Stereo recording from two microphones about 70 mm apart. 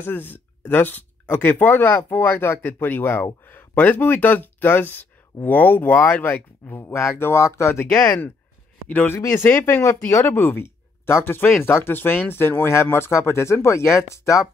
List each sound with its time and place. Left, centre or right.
0.0 s speech: left